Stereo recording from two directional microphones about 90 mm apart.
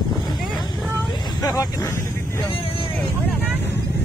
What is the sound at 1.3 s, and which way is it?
Vehicle, 40° left (ahead or behind).